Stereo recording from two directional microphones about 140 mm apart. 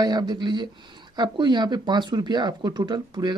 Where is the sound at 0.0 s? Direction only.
30° right (ahead or behind).